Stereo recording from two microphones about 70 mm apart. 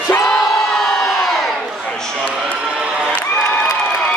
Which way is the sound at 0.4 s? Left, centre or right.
Centre.